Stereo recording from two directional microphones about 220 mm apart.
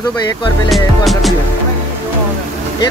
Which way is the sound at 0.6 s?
Centre (ahead or behind).